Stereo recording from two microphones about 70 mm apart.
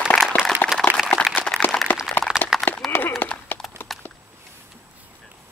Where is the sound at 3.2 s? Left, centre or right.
Left.